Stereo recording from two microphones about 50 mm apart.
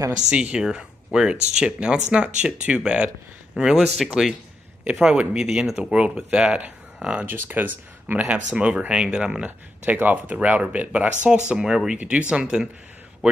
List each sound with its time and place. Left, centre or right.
0.3 s speech: right
3.8 s speech: centre
5.1 s speech: right
5.4 s speech: centre
7.2 s speech: right
8.3 s speech: right
9.8 s speech: right; by 12.0 s centre
12.0 s speech: right